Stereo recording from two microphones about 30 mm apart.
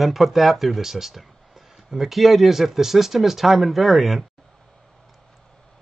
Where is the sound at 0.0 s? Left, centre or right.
Centre.